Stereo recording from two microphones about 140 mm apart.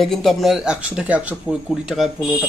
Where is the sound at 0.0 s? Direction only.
Centre (ahead or behind).